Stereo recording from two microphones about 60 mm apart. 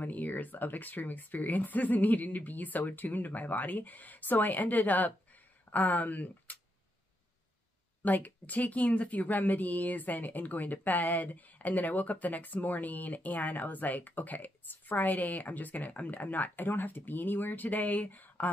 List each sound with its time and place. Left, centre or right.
0.0 s speech: left
8.0 s speech: left